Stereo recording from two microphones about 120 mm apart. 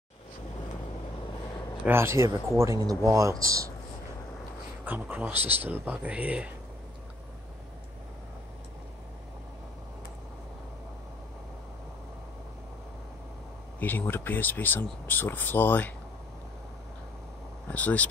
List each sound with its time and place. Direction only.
1.9 s speech: 20° right (ahead or behind)
4.8 s speech: 15° right (ahead or behind)
13.7 s speech: 15° left (ahead or behind)
17.6 s speech: 10° left (ahead or behind)